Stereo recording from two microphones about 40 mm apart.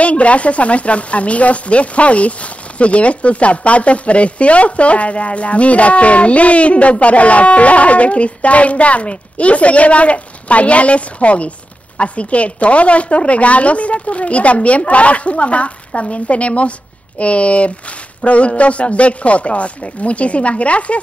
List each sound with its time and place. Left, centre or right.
0.0 s speech: left